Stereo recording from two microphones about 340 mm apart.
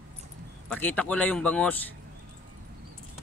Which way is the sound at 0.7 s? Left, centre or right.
Centre.